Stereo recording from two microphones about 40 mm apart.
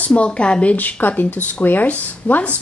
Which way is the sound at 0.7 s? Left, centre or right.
Left.